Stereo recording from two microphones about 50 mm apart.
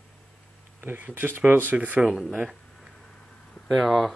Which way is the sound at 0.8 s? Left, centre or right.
Right.